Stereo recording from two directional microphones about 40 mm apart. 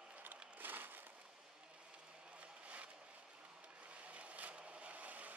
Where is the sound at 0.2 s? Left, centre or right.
Right.